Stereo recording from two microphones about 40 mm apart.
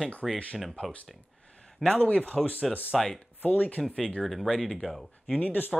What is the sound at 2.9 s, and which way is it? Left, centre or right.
Speech, centre.